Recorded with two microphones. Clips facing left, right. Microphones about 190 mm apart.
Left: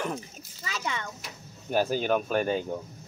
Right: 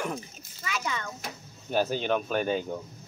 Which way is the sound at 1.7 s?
10° left (ahead or behind).